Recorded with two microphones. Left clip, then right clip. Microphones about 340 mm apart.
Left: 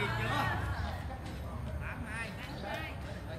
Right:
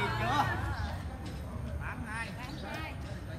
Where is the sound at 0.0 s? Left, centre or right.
Centre.